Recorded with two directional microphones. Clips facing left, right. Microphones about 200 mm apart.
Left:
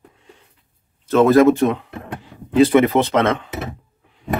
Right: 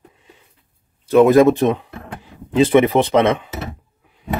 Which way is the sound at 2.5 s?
15° right (ahead or behind).